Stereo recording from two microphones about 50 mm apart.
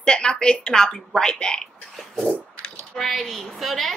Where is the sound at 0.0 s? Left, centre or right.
Centre.